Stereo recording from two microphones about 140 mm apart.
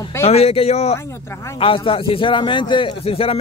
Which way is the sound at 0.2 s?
45° left (ahead or behind).